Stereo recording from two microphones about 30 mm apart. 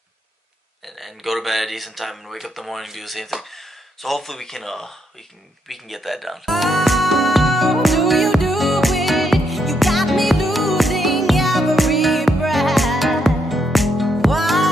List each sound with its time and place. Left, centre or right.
0.8 s speech: centre
5.7 s music: centre